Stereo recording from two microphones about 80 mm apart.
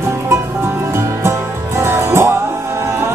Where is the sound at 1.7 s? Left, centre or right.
Right.